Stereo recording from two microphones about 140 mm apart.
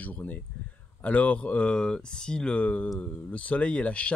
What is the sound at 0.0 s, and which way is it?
Speech, 10° left (ahead or behind).